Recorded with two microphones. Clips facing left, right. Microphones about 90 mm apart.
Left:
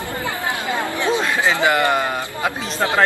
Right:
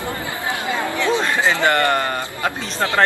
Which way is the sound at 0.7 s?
20° left (ahead or behind).